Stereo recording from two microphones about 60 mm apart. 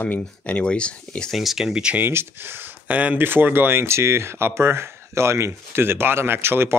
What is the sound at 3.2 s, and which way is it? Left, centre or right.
Speech, right.